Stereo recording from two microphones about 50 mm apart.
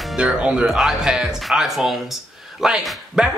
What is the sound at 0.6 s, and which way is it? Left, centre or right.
Speech, centre.